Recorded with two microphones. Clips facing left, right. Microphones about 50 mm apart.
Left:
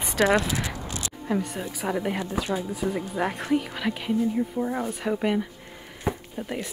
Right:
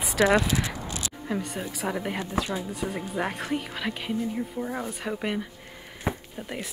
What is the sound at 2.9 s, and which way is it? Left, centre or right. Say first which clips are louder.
Speech: left 2 dB; centre.